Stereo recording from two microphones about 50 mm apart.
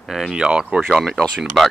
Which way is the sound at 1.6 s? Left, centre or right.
Centre.